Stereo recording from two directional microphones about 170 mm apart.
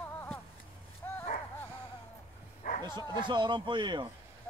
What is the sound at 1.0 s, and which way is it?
Dog, 15° left (ahead or behind).